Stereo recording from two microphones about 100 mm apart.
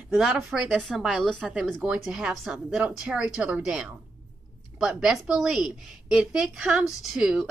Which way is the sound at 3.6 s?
5° right (ahead or behind).